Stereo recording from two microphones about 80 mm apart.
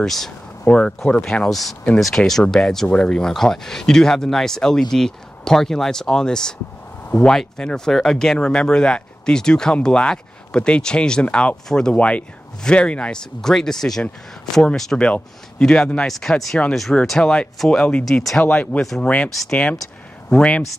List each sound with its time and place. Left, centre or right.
0.0 s speech: centre
18.4 s speech: centre
18.8 s speech: centre
19.0 s speech: centre